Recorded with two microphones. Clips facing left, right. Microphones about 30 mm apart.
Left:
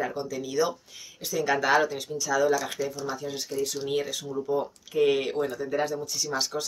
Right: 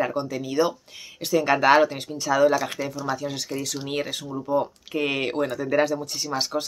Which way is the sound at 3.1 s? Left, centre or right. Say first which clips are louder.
Right 3 dB; right.